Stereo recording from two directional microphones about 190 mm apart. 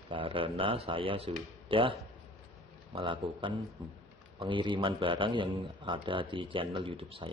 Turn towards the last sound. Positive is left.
turn(degrees=-30)  # may be behind; listen again after turning